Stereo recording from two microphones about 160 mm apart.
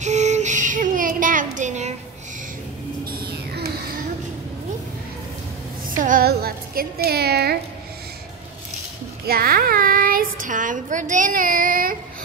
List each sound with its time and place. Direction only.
0.0 s child singing: 45° right (ahead or behind)
3.1 s a sound: 70° right (ahead or behind)
5.9 s speech: 60° right (ahead or behind); by 7.5 s 85° right
9.3 s child singing: 65° right (ahead or behind)